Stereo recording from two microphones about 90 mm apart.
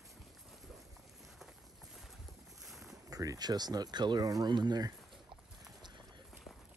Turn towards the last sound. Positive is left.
turn(degrees=-50)  # may be behind; listen again after turning